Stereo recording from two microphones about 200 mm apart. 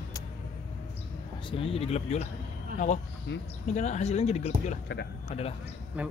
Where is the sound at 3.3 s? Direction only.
60° left (ahead or behind).